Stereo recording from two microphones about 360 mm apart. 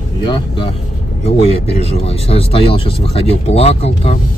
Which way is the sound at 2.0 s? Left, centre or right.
Centre.